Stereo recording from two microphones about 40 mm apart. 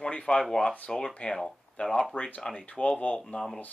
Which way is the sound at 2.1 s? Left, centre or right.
Left.